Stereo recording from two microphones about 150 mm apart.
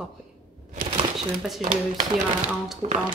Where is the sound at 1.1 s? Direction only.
Centre (ahead or behind).